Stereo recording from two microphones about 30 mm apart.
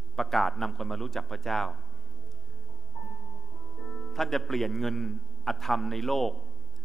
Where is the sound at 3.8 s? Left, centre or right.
Centre.